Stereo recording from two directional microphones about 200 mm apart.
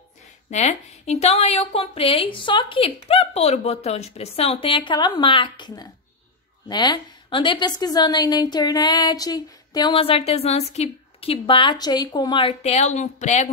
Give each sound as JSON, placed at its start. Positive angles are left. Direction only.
{"t": 0.5, "sound": "a woman's voice", "side_deg": 35}